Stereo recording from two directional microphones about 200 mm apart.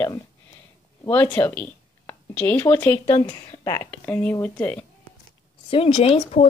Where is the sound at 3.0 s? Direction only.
25° left (ahead or behind); by 4.9 s 5° left (ahead or behind).